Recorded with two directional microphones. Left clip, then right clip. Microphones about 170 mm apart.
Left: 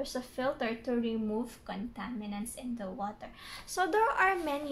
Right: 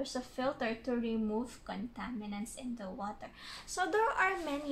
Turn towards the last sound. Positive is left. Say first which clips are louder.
# left 4 dB
turn(degrees=20)  # may be behind; listen again after turning